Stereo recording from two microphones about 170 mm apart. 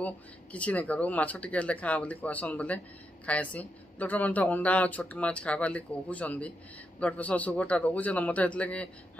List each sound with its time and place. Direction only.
0.0 s speech: 10° left (ahead or behind)